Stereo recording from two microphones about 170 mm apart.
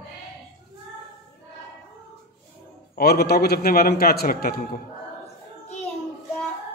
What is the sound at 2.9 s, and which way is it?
A man's voice, 70° left (ahead or behind).